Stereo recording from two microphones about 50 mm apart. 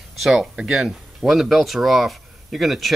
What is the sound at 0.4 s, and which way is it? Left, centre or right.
Speech, centre.